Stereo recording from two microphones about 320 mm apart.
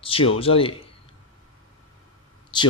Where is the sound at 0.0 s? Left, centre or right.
Centre.